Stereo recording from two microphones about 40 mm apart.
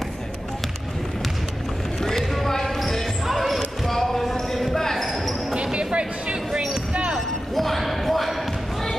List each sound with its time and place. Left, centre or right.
2.0 s basketball bounce: centre
5.5 s basketball bounce: right
7.5 s basketball bounce: centre